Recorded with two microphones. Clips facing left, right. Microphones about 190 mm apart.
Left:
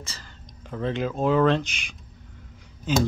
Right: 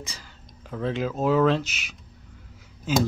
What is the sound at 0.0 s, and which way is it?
Speech, 15° right (ahead or behind).